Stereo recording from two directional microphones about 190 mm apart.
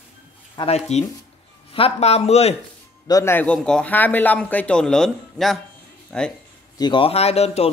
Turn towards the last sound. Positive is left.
turn(degrees=35)  # may be behind; listen again after turning